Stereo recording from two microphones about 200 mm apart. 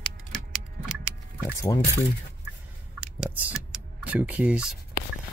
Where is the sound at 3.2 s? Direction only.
5° right (ahead or behind).